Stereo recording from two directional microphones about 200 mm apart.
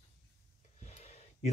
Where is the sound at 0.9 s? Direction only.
35° left (ahead or behind).